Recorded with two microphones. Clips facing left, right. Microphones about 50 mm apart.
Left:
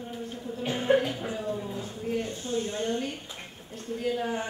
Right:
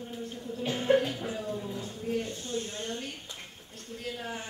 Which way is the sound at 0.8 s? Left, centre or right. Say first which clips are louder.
Left 1 dB; centre.